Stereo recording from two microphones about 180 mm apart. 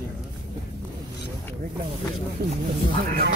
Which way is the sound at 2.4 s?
60° right (ahead or behind).